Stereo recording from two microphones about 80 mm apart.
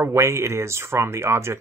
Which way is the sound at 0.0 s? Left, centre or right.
Right.